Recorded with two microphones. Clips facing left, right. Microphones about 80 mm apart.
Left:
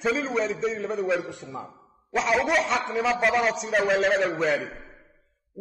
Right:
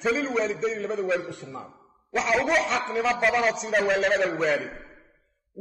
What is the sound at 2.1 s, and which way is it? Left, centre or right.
A man's voice, centre.